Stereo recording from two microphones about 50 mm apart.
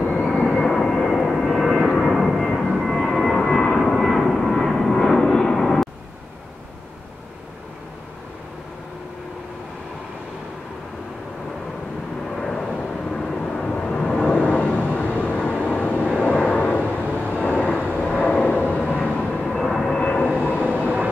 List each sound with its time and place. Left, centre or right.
0.6 s vehicle: centre
12.4 s vehicle: centre; by 19.4 s left
19.4 s vehicle: centre
19.9 s vehicle: left
20.7 s vehicle: right